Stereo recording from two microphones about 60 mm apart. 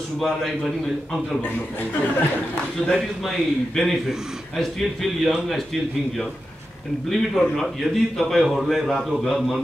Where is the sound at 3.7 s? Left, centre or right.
Centre.